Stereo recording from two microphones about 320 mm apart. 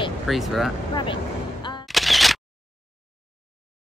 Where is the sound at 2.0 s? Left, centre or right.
Centre.